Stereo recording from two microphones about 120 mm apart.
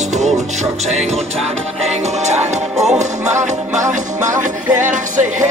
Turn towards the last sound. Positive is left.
turn(degrees=-90)